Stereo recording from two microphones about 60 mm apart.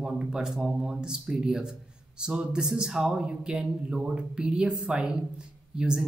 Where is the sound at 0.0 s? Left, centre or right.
Centre.